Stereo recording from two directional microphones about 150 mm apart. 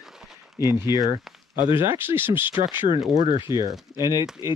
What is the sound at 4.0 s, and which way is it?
Speech, 30° left (ahead or behind).